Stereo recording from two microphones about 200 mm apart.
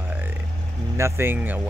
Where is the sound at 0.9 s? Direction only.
15° right (ahead or behind).